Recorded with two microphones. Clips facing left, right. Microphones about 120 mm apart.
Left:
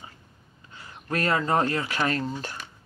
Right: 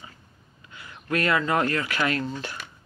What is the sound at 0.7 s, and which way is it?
Speech, 35° left (ahead or behind).